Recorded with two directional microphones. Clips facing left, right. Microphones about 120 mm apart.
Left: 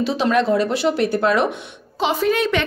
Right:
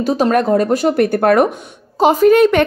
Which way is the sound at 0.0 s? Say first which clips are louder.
Right 4 dB; 45° right (ahead or behind).